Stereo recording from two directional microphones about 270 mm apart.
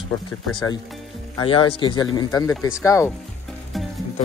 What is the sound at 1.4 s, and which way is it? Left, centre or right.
Speech, centre.